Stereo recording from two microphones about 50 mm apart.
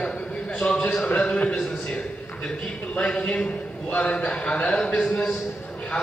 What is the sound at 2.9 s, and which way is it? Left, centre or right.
A man's voice, left.